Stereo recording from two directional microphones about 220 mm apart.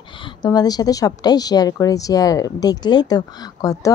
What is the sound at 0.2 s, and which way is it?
A woman's voice, 20° left (ahead or behind).